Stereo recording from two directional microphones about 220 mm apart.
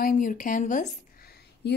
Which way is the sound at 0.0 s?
40° left (ahead or behind).